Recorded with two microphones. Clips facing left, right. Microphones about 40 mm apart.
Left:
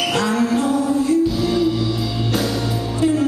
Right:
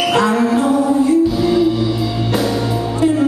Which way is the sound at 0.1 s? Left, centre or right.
Centre.